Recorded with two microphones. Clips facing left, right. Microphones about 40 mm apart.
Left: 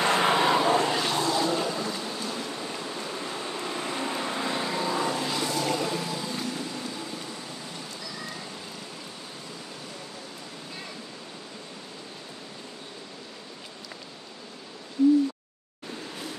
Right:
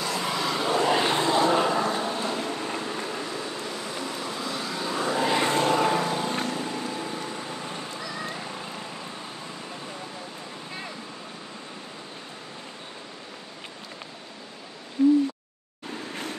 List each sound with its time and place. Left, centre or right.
0.0 s vehicle: left
0.9 s vehicle: right
3.6 s vehicle: left; by 5.0 s centre
5.1 s vehicle: right
15.0 s hoot: right